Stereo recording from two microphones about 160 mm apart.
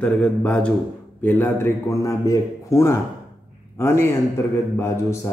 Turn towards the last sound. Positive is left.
turn(degrees=15)  # may be behind; listen again after turning